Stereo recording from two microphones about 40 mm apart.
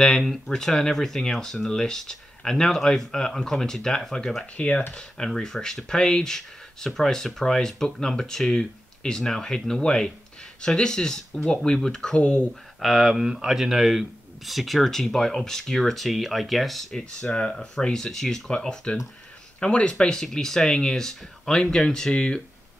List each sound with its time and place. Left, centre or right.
0.0 s speech: centre
4.6 s speech: left
4.9 s speech: centre
12.2 s speech: left
12.8 s speech: centre
13.1 s speech: centre
16.9 s speech: left
18.5 s speech: left